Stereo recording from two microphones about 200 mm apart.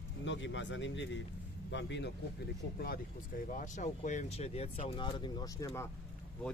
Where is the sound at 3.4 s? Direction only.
40° left (ahead or behind); by 5.9 s 15° left (ahead or behind).